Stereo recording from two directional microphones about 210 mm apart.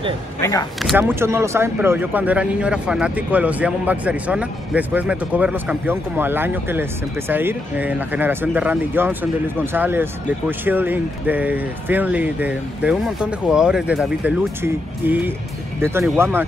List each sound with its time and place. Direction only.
0.4 s speech: 15° left (ahead or behind)
0.8 s speech: 10° right (ahead or behind)